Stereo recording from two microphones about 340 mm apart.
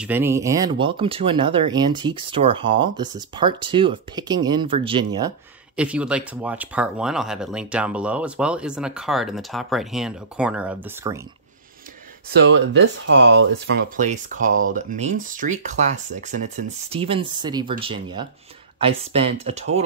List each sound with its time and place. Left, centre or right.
0.0 s speech: centre
12.3 s speech: right